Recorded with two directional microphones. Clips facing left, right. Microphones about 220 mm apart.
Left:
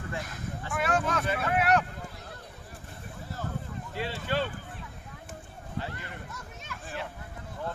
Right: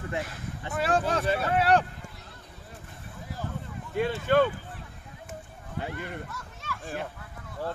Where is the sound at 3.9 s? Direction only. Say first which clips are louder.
Right 8 dB; 50° right (ahead or behind).